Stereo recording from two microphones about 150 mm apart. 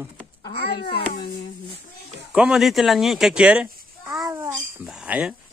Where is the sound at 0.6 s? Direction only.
90° left.